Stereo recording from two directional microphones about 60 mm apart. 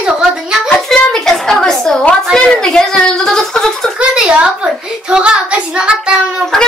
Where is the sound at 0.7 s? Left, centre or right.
Centre.